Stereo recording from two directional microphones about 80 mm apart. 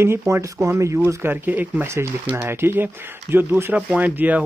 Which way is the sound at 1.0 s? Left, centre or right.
Right.